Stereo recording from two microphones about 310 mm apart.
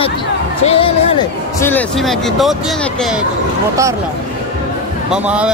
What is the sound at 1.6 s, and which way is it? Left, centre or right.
Speech, centre.